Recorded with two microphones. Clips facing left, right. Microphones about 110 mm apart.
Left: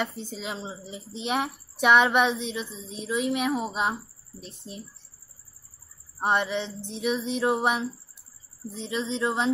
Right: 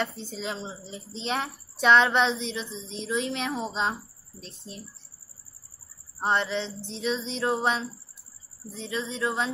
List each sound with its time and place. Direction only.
0.0 s a woman's voice: 15° left (ahead or behind)
6.1 s a woman's voice: 15° left (ahead or behind)